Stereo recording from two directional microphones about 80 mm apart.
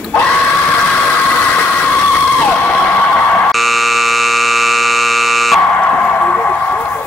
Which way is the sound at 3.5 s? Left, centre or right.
Centre.